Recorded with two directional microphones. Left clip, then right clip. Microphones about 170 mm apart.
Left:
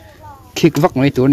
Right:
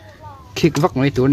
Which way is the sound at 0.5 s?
25° left (ahead or behind).